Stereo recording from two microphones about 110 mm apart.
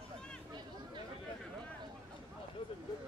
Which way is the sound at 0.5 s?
40° right (ahead or behind).